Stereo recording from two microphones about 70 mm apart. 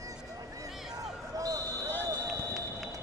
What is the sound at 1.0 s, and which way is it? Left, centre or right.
Basketball bounce, right.